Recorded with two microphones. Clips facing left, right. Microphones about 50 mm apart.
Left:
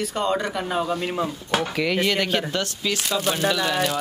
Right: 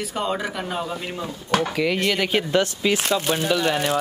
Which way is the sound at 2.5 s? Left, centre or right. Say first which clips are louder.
Right 6 dB; centre.